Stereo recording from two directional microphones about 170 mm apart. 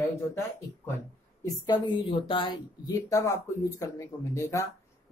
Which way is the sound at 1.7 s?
30° left (ahead or behind).